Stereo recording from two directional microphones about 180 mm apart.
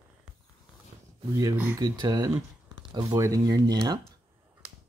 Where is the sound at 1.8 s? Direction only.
25° right (ahead or behind).